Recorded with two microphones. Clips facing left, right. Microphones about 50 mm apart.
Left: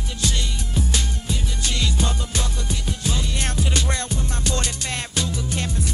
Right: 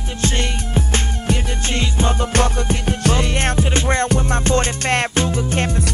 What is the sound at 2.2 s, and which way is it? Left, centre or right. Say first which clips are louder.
Music: right 11 dB; right.